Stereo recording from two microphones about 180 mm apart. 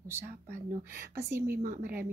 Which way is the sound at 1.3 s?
15° right (ahead or behind).